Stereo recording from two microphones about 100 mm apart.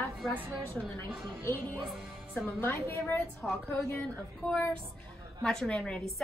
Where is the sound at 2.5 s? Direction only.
25° left (ahead or behind).